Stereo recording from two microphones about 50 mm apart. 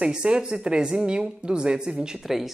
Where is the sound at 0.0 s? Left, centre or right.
Centre.